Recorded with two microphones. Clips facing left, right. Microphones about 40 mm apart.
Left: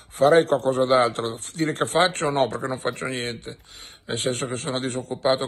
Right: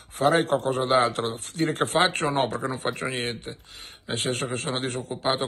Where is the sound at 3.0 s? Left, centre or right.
Centre.